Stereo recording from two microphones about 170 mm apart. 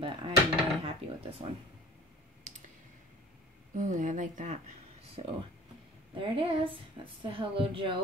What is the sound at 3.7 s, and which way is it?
Speech, 45° right (ahead or behind).